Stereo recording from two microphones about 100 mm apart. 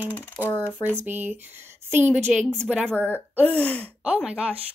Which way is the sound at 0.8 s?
20° right (ahead or behind).